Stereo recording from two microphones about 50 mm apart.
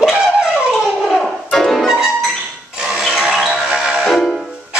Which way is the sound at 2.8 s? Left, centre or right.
Centre.